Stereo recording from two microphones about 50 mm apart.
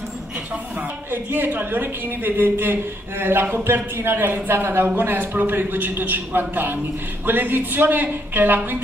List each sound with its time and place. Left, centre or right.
1.1 s speech: right